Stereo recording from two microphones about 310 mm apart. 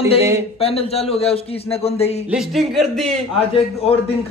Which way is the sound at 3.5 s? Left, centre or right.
Centre.